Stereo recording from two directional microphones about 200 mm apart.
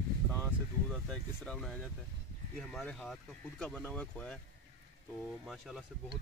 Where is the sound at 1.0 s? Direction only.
5° left (ahead or behind).